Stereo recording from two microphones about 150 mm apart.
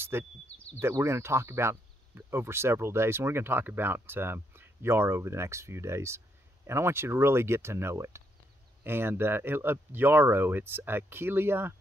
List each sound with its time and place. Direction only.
0.1 s speech: 15° right (ahead or behind)